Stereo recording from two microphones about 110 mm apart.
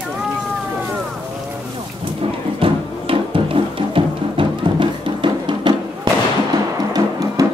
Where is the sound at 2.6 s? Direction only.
55° right (ahead or behind).